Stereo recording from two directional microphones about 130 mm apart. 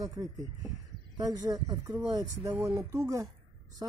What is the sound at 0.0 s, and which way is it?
Speech, 25° right (ahead or behind).